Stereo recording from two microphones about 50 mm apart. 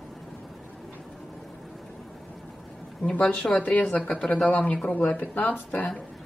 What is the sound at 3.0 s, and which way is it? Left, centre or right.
Speech, left.